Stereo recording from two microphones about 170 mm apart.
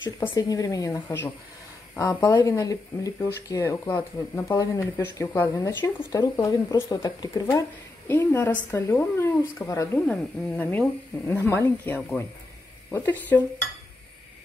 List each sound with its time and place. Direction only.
0.3 s a woman's voice: 20° left (ahead or behind)
9.9 s speech: 5° left (ahead or behind)